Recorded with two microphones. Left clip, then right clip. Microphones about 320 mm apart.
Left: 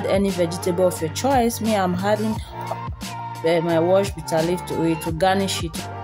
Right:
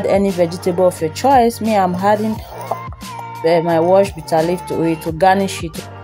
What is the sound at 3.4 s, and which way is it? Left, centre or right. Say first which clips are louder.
Speech: right 6 dB; left.